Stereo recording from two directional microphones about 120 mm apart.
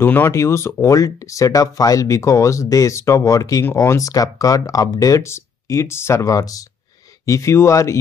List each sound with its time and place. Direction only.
0.0 s speech: 20° left (ahead or behind)